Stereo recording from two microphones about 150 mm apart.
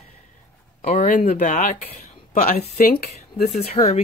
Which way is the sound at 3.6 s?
50° left (ahead or behind).